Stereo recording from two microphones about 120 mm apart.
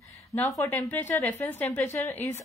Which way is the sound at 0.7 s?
15° left (ahead or behind).